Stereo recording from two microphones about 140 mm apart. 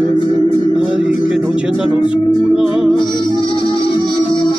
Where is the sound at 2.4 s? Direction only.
Centre (ahead or behind).